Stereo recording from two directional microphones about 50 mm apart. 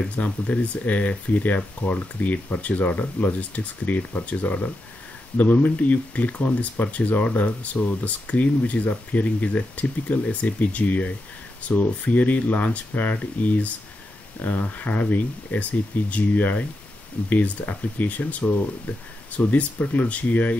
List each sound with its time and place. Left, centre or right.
0.1 s speech: left